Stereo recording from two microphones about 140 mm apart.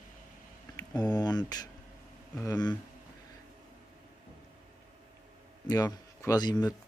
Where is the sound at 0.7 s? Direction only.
30° left (ahead or behind).